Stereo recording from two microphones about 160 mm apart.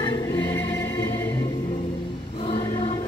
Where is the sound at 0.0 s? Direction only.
25° left (ahead or behind).